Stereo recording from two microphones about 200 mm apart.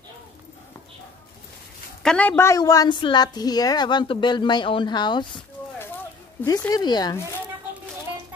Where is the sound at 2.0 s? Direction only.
5° left (ahead or behind).